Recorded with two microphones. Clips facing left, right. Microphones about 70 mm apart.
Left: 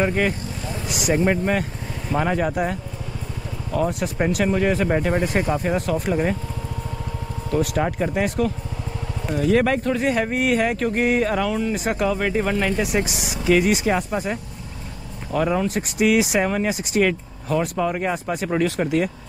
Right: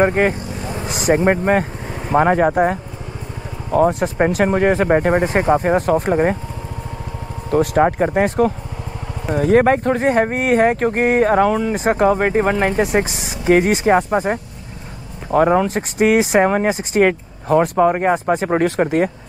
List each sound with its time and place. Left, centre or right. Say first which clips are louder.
0.0 s speech: right 6 dB; right
7.5 s speech: right 7 dB; right